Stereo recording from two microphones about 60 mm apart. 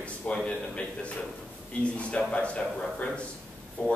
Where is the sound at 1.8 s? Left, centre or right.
Centre.